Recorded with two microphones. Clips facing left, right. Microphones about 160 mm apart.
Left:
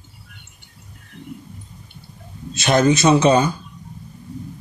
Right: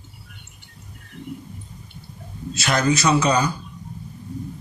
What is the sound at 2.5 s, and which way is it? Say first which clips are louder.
Speech: left 5 dB; 25° left (ahead or behind).